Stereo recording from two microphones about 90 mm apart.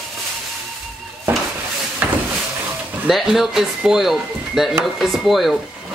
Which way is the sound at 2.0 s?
15° right (ahead or behind).